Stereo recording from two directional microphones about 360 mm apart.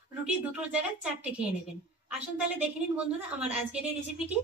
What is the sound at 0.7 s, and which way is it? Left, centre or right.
Speech, centre.